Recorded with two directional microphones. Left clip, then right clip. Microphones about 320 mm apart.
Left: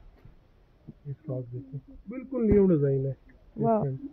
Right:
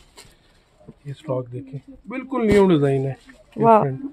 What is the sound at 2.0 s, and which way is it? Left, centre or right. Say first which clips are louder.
Speech: right 7 dB; right.